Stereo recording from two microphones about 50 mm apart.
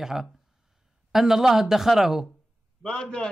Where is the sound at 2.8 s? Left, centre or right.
Left.